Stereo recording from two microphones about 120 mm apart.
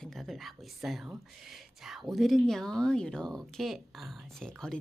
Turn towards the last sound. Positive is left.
turn(degrees=5)  # may be behind; listen again after turning